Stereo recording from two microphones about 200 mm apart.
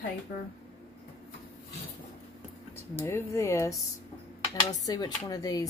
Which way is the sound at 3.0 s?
15° left (ahead or behind).